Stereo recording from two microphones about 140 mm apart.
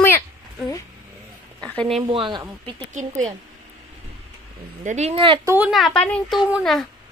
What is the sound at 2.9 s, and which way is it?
Speech, 60° right (ahead or behind).